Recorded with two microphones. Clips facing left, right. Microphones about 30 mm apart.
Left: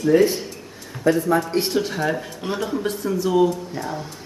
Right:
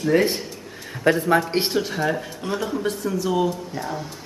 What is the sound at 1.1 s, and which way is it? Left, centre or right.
Speech, right.